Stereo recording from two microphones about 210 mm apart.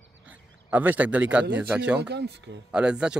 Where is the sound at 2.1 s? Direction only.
55° right (ahead or behind).